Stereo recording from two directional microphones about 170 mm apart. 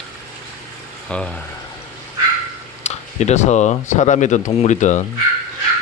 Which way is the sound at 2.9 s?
40° left (ahead or behind).